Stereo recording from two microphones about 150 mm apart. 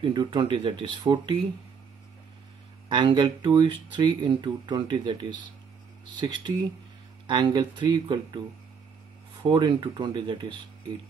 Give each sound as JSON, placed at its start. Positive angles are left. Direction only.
{"t": 0.0, "sound": "speech", "side_deg": -30}
{"t": 2.9, "sound": "speech", "side_deg": -30}
{"t": 9.4, "sound": "speech", "side_deg": -30}